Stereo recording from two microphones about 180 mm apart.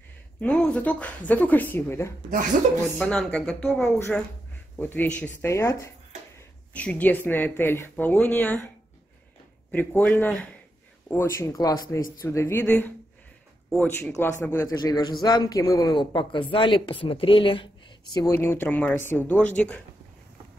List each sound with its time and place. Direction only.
0.4 s speech: 5° left (ahead or behind); by 18.3 s 25° left (ahead or behind)
18.3 s speech: 10° left (ahead or behind)